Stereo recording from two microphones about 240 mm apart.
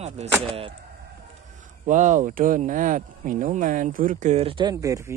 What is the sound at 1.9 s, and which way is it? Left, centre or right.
Speech, right.